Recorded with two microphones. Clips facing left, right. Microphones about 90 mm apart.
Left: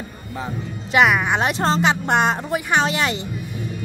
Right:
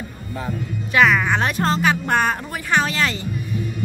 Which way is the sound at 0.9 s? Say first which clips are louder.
Even; 15° left (ahead or behind).